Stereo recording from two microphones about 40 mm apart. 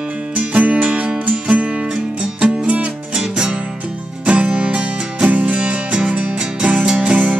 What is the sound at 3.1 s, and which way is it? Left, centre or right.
Music, centre.